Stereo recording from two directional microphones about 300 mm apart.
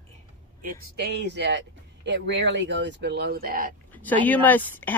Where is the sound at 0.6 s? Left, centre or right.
Right.